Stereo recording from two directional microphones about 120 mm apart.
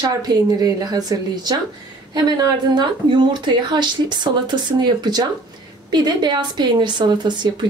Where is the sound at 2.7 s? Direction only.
40° right (ahead or behind).